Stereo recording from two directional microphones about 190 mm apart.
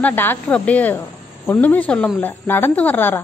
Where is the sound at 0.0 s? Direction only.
10° left (ahead or behind).